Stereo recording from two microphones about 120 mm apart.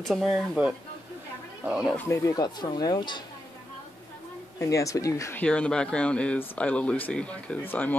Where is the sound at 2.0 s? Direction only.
25° left (ahead or behind).